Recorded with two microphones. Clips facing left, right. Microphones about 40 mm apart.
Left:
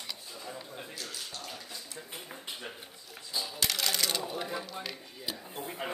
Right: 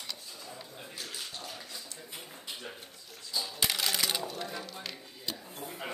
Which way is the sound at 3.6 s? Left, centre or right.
Centre.